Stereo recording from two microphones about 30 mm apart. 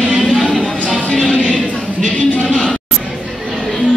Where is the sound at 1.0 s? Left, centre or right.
Left.